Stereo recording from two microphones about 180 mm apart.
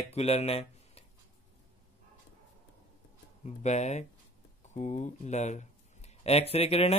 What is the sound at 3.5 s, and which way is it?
Speech, 40° left (ahead or behind).